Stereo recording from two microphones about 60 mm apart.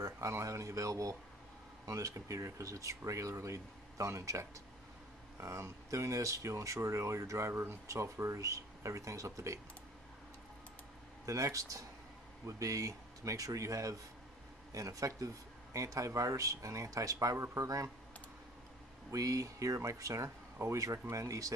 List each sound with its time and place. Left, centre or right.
0.0 s speech: right
11.2 s speech: right
19.0 s speech: right